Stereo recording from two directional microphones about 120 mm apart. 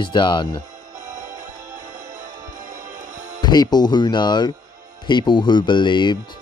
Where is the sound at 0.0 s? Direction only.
40° left (ahead or behind).